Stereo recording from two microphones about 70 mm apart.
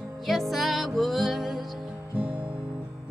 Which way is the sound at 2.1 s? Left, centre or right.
Right.